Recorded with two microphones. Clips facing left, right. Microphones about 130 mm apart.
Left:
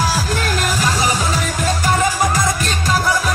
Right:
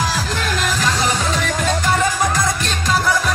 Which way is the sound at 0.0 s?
10° left (ahead or behind).